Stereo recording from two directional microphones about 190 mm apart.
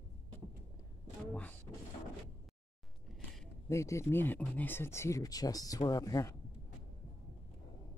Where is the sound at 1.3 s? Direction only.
5° left (ahead or behind).